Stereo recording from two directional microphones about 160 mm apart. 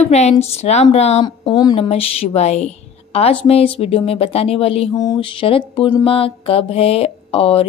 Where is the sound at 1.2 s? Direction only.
25° left (ahead or behind).